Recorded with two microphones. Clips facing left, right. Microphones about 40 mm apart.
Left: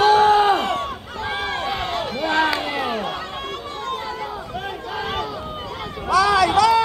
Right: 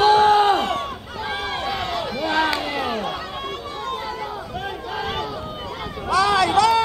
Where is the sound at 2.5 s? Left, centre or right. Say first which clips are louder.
Left 1 dB; centre.